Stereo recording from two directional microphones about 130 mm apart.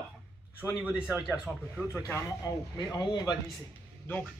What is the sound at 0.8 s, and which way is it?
Speech, 5° right (ahead or behind).